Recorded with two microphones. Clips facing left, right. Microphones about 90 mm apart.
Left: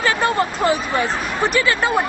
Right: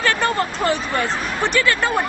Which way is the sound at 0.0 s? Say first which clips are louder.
Left 1 dB; 5° left (ahead or behind).